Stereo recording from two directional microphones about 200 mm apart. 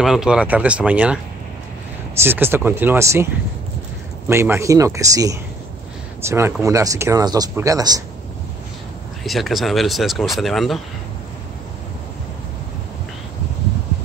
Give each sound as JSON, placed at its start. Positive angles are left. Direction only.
{"t": 0.0, "sound": "speech", "side_deg": 0}
{"t": 4.3, "sound": "speech", "side_deg": -10}
{"t": 9.2, "sound": "speech", "side_deg": 0}